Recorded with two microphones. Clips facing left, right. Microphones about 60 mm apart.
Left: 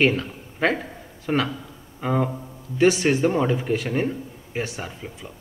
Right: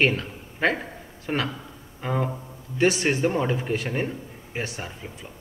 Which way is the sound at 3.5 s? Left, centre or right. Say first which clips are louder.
Left 3 dB; centre.